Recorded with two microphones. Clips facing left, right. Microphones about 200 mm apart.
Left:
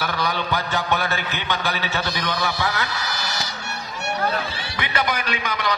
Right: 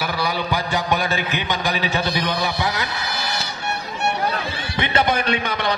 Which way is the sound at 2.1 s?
15° right (ahead or behind).